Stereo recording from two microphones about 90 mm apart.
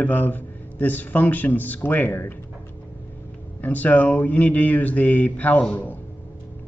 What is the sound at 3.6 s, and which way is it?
A man's voice, 20° left (ahead or behind).